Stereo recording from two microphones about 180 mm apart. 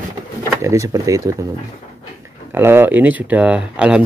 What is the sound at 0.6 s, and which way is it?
Speech, 15° right (ahead or behind).